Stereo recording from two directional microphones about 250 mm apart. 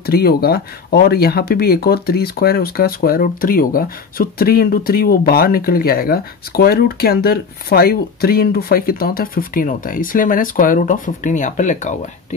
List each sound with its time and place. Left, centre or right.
0.0 s speech: left